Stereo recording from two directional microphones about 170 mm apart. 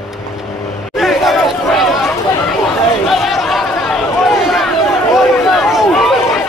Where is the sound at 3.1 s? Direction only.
Centre (ahead or behind).